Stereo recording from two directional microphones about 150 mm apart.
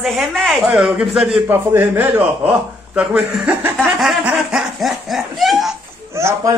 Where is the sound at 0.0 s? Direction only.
Centre (ahead or behind).